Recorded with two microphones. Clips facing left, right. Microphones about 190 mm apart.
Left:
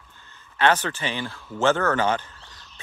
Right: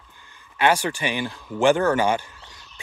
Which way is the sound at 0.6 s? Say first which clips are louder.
Right 1 dB; 10° right (ahead or behind).